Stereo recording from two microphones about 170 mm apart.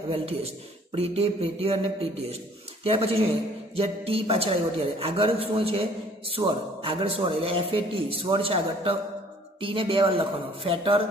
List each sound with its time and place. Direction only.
0.1 s a man's voice: 35° right (ahead or behind)
2.8 s a man's voice: 35° right (ahead or behind)